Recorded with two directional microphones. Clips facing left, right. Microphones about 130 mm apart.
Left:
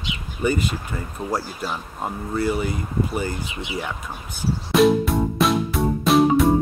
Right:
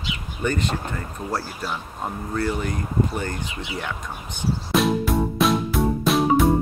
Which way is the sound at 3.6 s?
10° left (ahead or behind).